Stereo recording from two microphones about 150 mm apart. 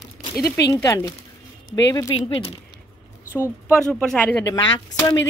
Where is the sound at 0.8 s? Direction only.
20° left (ahead or behind).